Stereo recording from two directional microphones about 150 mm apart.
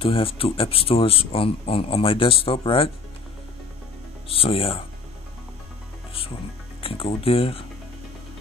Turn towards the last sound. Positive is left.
turn(degrees=40)  # may be behind; listen again after turning